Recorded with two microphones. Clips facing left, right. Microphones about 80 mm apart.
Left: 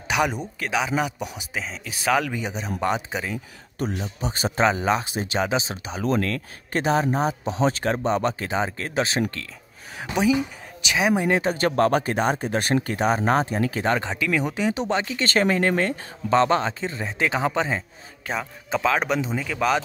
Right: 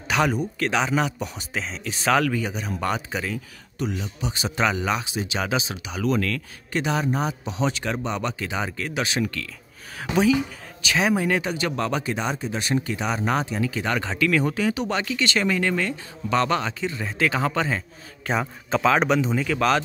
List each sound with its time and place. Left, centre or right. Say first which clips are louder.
0.1 s speech: right 1 dB; centre
4.0 s speech: left 2 dB; left
5.4 s speech: left 3 dB; left
10.1 s speech: right 1 dB; centre
11.2 s speech: left 2 dB; left
11.5 s speech: left 5 dB; left
13.8 s speech: right 2 dB; left
15.2 s speech: left 3 dB; left; by 17.8 s centre
18.3 s speech: right 3 dB; centre